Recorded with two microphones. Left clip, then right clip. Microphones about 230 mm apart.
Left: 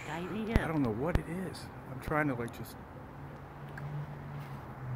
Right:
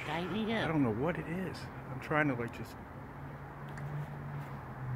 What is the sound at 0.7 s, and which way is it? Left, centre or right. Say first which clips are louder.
Speech: right 1 dB; centre.